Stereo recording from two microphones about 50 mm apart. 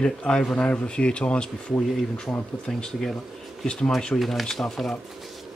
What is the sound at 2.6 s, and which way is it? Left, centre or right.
Speech, centre.